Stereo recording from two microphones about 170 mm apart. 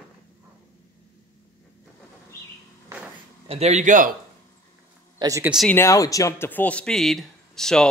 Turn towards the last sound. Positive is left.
turn(degrees=5)  # may be behind; listen again after turning